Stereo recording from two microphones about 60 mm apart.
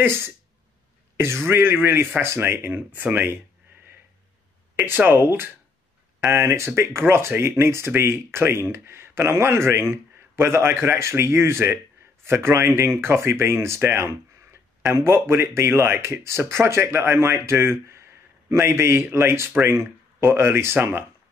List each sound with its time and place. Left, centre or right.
0.0 s speech: right
4.8 s speech: right
6.3 s speech: right